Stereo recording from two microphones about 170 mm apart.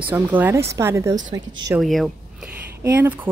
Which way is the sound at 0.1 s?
10° right (ahead or behind).